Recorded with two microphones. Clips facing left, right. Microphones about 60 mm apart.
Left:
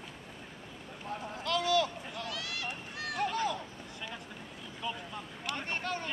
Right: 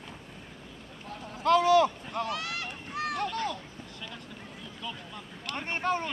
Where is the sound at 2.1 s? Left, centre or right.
Right.